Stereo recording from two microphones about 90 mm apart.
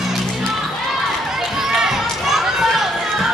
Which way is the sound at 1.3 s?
5° right (ahead or behind).